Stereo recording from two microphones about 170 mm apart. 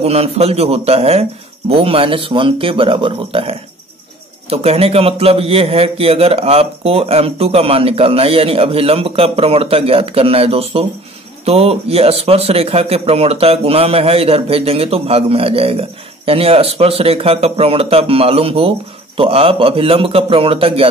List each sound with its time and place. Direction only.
0.0 s a man's voice: 35° right (ahead or behind)